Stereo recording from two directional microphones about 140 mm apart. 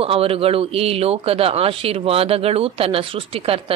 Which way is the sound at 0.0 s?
45° right (ahead or behind).